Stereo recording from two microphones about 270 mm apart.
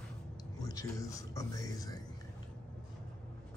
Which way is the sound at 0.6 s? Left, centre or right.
Centre.